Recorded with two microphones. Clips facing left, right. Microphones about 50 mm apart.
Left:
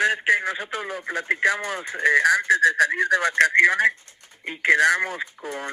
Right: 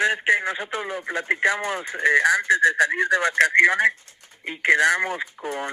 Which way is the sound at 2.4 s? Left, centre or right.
Right.